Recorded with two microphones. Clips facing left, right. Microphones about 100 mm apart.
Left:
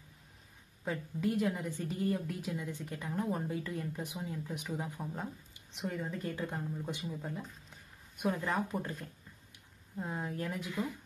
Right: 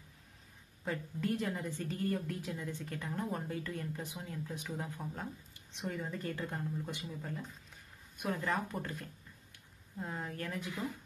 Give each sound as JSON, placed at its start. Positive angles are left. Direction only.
{"t": 0.8, "sound": "a woman's voice", "side_deg": 5}
{"t": 6.9, "sound": "speech", "side_deg": 15}
{"t": 8.3, "sound": "a woman's voice", "side_deg": 0}
{"t": 9.9, "sound": "a woman's voice", "side_deg": 5}